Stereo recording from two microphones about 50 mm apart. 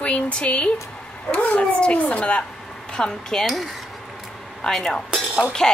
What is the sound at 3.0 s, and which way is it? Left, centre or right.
Speech, centre.